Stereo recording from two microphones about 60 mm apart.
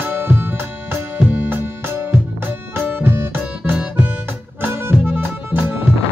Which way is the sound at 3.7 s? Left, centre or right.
Right.